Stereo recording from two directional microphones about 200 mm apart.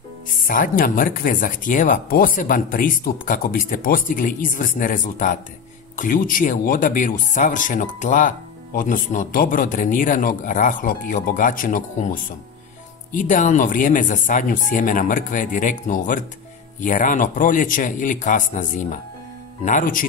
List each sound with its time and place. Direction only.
0.5 s speech: 45° left (ahead or behind)